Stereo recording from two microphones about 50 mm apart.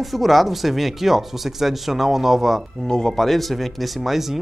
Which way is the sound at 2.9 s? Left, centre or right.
Centre.